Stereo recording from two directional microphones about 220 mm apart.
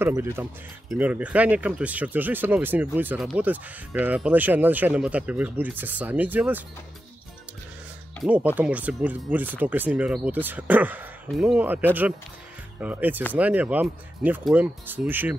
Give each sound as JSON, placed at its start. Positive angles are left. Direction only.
{"t": 0.0, "sound": "speech", "side_deg": -10}
{"t": 8.2, "sound": "speech", "side_deg": -5}
{"t": 12.8, "sound": "speech", "side_deg": -5}